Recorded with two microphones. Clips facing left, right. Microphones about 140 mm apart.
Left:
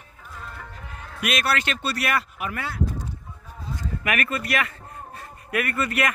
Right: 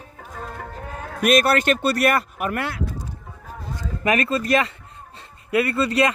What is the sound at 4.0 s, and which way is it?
Speech, 30° right (ahead or behind).